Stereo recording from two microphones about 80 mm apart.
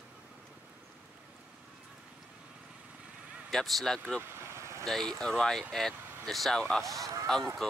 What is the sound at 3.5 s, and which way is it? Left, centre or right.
Speech, centre.